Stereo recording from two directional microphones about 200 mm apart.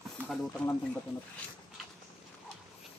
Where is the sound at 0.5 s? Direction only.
5° left (ahead or behind).